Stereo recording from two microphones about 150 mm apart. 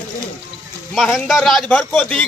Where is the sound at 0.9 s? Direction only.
Centre (ahead or behind).